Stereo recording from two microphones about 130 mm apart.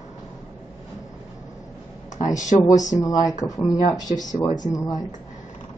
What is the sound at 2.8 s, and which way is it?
Speech, 30° left (ahead or behind).